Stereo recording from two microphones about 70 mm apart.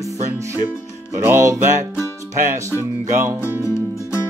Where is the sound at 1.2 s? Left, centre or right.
Right.